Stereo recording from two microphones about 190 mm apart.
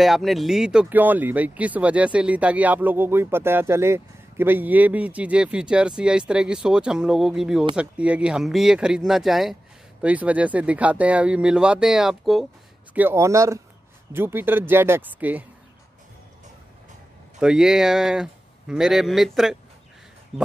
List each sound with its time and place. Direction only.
0.0 s speech: centre (ahead or behind)
17.4 s speech: 5° right (ahead or behind)